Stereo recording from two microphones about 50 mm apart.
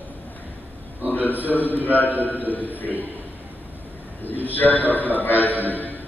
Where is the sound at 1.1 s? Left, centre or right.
Left.